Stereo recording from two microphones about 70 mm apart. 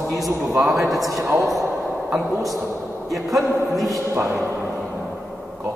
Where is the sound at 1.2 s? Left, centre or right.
Right.